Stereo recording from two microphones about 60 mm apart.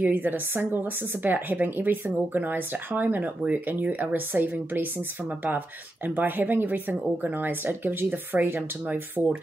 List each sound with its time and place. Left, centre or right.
0.0 s a woman's voice: right